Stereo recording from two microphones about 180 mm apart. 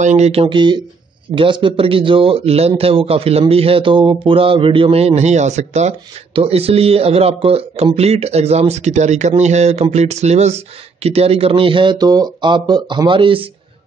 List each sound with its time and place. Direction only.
0.0 s speech: 40° right (ahead or behind)